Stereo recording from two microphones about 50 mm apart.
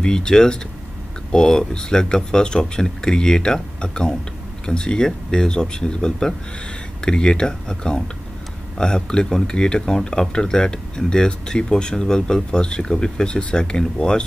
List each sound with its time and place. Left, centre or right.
0.0 s speech: centre